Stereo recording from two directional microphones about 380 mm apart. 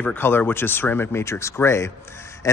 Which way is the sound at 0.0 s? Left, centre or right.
Centre.